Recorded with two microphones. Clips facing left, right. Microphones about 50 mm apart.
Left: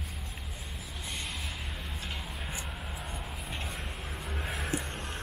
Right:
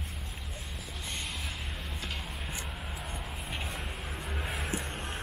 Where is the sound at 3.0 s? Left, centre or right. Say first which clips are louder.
Even; centre.